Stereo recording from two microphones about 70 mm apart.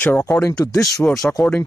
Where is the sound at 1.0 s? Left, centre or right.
Left.